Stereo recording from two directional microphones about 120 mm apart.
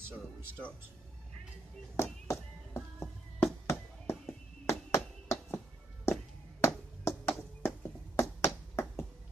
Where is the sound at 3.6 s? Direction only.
25° left (ahead or behind).